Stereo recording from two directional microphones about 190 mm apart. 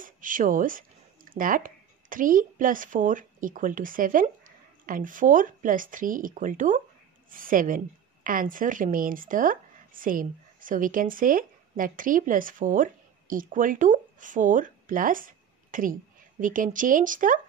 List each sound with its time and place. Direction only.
0.0 s a woman's voice: 45° right (ahead or behind)